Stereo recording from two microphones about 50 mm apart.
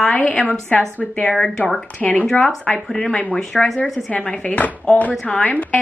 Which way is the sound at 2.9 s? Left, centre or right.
Left.